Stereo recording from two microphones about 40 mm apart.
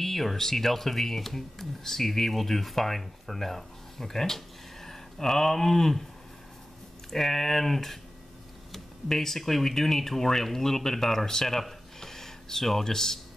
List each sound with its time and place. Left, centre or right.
0.0 s speech: centre
7.1 s speech: centre